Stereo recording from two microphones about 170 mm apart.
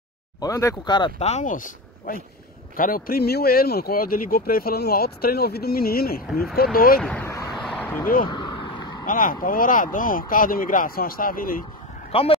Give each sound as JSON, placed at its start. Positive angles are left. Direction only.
{"t": 0.4, "sound": "speech", "side_deg": 20}
{"t": 1.2, "sound": "speech", "side_deg": 45}
{"t": 7.0, "sound": "speech", "side_deg": 5}
{"t": 7.5, "sound": "a sound", "side_deg": 5}
{"t": 8.3, "sound": "vehicle", "side_deg": 25}
{"t": 9.0, "sound": "speech", "side_deg": 55}
{"t": 12.1, "sound": "speech", "side_deg": 35}